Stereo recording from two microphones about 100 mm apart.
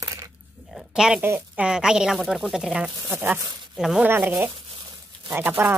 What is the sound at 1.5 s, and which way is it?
A woman's voice, 10° right (ahead or behind).